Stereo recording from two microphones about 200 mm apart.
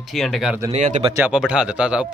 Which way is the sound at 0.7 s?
35° right (ahead or behind).